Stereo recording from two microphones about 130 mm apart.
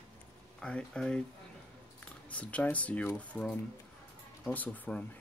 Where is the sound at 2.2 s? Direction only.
10° left (ahead or behind).